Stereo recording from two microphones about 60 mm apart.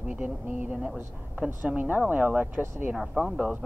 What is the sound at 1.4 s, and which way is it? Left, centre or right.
Speech, right.